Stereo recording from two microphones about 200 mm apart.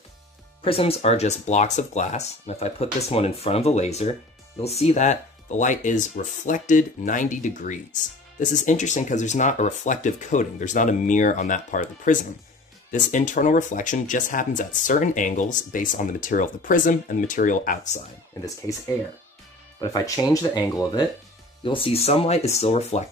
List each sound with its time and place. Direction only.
0.7 s speech: 30° left (ahead or behind)
18.7 s speech: 15° left (ahead or behind); by 23.0 s 30° left (ahead or behind)